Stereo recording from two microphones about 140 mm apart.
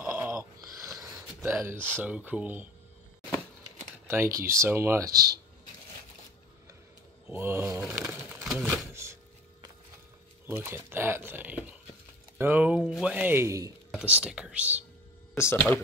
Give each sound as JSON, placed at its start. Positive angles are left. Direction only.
{"t": 0.0, "sound": "a sound", "side_deg": -10}
{"t": 1.4, "sound": "speech", "side_deg": -20}
{"t": 4.1, "sound": "speech", "side_deg": -20}
{"t": 7.2, "sound": "speech", "side_deg": -15}
{"t": 7.8, "sound": "speech", "side_deg": -5}
{"t": 8.9, "sound": "a sound", "side_deg": -20}
{"t": 10.4, "sound": "speech", "side_deg": -15}
{"t": 13.9, "sound": "speech", "side_deg": -10}
{"t": 15.3, "sound": "speech", "side_deg": 15}